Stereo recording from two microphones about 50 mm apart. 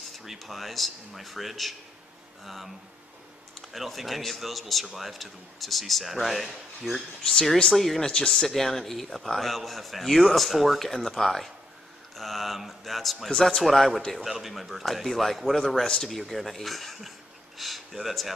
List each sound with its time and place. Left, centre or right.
0.2 s a man's voice: centre
3.7 s a man's voice: centre
8.1 s a man's voice: centre